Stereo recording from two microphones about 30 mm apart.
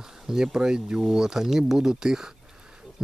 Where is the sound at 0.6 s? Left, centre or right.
Right.